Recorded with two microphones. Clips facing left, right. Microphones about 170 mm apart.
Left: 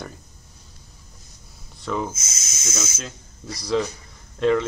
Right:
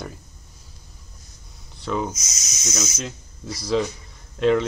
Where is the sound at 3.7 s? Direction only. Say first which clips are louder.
Even; centre (ahead or behind).